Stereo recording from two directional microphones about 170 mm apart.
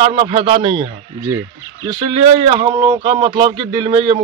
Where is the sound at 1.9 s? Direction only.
30° right (ahead or behind).